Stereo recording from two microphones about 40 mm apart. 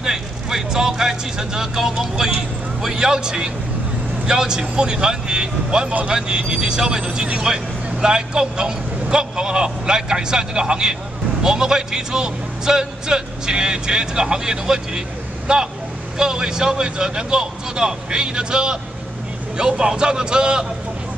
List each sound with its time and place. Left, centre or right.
0.0 s a man's voice: centre